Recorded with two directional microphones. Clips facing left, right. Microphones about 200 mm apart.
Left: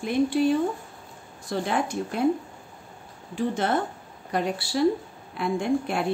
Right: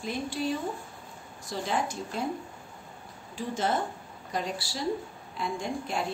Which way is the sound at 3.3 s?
60° left (ahead or behind).